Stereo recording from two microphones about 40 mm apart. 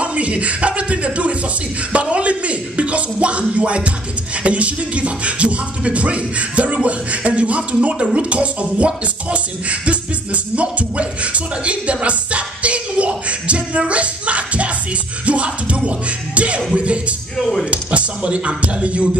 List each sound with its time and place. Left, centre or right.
0.0 s music: right
17.4 s speech: centre
17.6 s speech: right